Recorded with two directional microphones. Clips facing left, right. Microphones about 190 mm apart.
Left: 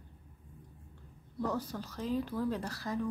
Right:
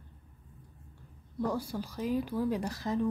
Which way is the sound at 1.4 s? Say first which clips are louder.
Right 3 dB; 10° right (ahead or behind).